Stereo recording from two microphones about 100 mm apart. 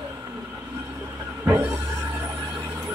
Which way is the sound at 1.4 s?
20° right (ahead or behind).